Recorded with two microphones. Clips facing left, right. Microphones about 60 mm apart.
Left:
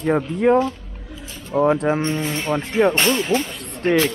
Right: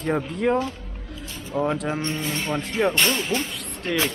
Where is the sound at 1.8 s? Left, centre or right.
Left.